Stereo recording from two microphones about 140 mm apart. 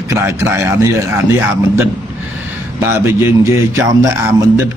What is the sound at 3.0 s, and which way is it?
Speech, 15° right (ahead or behind).